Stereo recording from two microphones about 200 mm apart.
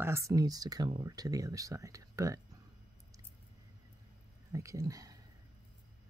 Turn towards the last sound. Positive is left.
turn(degrees=-15)  # may be behind; listen again after turning